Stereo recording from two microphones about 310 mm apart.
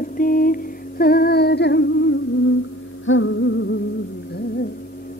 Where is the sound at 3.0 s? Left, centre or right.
Left.